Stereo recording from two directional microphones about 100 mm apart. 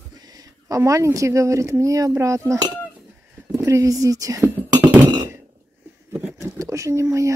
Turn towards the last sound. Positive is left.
turn(degrees=-30)  # may be behind; listen again after turning